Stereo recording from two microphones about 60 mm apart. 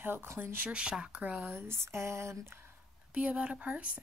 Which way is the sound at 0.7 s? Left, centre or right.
Centre.